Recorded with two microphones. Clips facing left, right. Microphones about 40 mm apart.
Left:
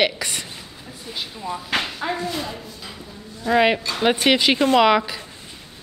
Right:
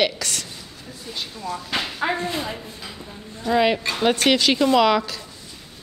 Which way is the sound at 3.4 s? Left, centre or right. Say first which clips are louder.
Left 1 dB; centre.